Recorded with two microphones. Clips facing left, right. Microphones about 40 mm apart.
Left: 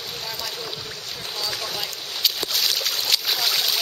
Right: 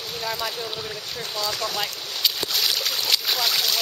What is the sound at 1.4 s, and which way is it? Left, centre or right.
Speech, centre.